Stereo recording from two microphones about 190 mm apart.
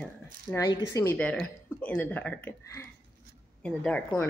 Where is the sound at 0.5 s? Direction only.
15° left (ahead or behind).